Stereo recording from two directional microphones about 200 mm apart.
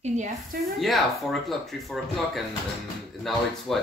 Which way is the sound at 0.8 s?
Centre (ahead or behind).